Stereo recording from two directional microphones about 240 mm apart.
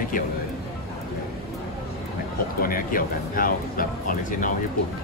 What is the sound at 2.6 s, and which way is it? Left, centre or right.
Speech, left.